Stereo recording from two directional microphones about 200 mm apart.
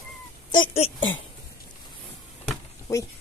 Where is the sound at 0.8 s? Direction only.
75° left (ahead or behind).